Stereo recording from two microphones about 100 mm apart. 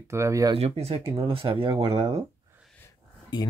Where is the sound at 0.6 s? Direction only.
90° right.